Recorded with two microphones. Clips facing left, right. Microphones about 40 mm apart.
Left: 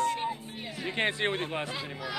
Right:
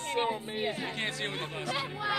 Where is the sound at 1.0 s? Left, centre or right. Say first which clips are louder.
Left 6 dB; left.